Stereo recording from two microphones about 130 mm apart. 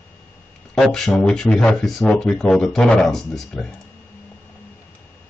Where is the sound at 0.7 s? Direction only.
Centre (ahead or behind).